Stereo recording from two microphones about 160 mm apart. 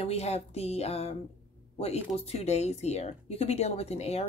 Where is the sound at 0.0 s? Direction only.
40° left (ahead or behind).